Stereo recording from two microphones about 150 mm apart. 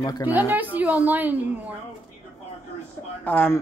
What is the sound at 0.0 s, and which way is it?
Speech, 25° left (ahead or behind).